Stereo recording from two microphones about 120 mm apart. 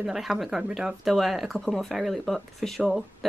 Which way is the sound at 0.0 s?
5° right (ahead or behind).